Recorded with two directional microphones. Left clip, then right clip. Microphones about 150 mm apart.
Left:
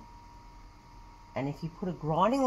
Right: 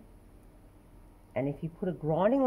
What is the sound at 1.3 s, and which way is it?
Speech, 10° right (ahead or behind).